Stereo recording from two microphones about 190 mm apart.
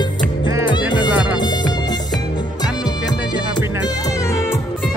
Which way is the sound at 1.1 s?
5° right (ahead or behind).